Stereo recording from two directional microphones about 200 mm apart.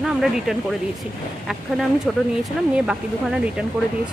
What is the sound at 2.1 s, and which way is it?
Speech, centre (ahead or behind).